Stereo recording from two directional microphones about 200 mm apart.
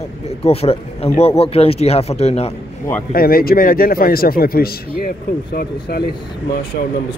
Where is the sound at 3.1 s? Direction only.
50° left (ahead or behind).